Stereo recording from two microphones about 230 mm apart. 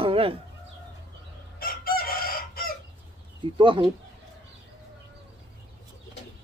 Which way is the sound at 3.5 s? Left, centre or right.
Right.